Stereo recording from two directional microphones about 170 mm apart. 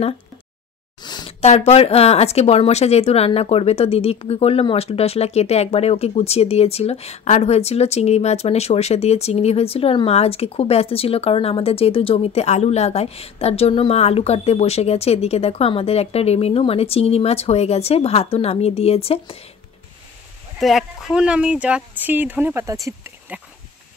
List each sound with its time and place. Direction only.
1.0 s a sound: 25° left (ahead or behind)
1.4 s speech: 40° left (ahead or behind)
20.5 s speech: centre (ahead or behind)